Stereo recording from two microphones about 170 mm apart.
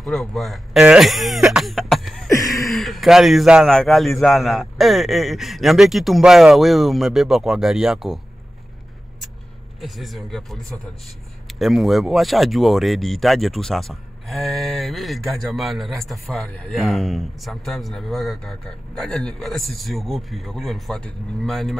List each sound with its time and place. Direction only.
0.0 s speech: centre (ahead or behind)
2.2 s a sound: 20° left (ahead or behind)
2.7 s speech: centre (ahead or behind)
9.8 s speech: centre (ahead or behind)